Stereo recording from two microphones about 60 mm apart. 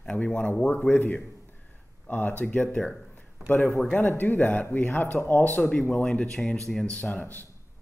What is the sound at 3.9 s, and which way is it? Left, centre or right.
Speech, left.